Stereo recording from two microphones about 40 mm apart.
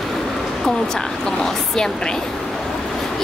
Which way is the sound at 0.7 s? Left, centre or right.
Centre.